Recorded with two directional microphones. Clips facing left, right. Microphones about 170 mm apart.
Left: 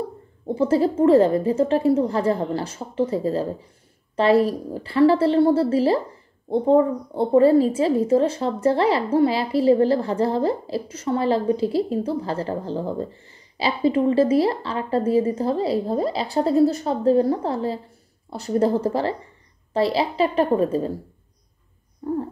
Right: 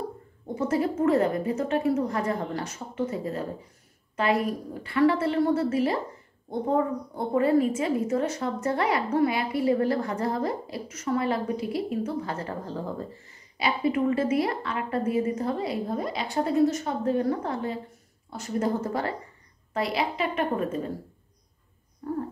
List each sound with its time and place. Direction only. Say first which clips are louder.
0.5 s a woman's voice: left 7 dB; 30° left (ahead or behind)